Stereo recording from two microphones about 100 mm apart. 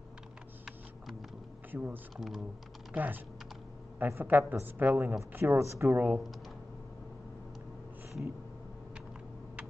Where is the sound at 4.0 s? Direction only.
20° right (ahead or behind).